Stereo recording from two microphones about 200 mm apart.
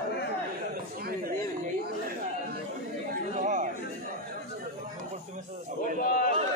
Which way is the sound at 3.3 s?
40° right (ahead or behind).